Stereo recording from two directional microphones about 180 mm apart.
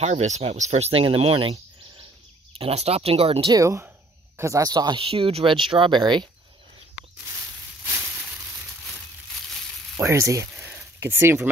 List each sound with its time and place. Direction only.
0.0 s speech: 40° right (ahead or behind)
3.5 s speech: 15° right (ahead or behind)
9.9 s speech: 15° right (ahead or behind)